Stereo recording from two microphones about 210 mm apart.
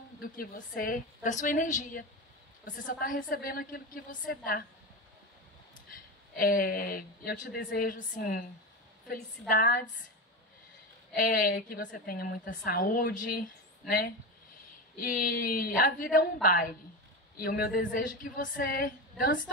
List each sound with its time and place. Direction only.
0.2 s a woman's voice: 45° left (ahead or behind)
5.9 s a woman's voice: 45° left (ahead or behind)
11.1 s a woman's voice: 40° left (ahead or behind)